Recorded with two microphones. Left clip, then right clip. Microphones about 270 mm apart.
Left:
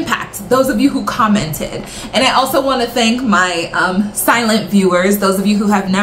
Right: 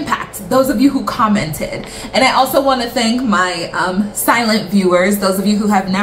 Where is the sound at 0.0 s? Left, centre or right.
Centre.